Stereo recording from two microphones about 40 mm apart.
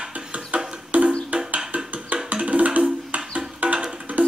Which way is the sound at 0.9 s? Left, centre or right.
Right.